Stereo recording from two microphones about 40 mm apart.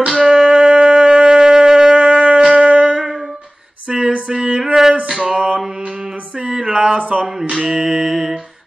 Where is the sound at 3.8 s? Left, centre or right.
Right.